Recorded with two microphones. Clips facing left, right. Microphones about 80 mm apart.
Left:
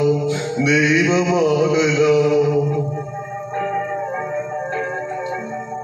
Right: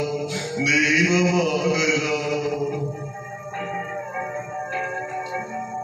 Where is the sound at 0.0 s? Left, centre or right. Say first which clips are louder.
Left 8 dB; left.